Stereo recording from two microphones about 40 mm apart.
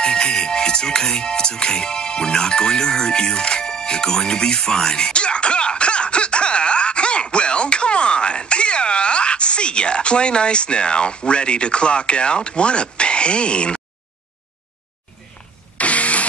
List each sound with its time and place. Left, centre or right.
0.0 s music: left
15.8 s vehicle: left